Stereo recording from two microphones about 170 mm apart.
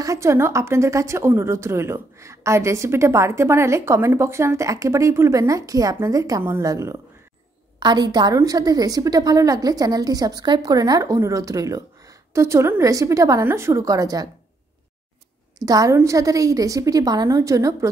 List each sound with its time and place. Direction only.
0.0 s a woman's voice: 20° right (ahead or behind)
15.6 s a woman's voice: 20° right (ahead or behind)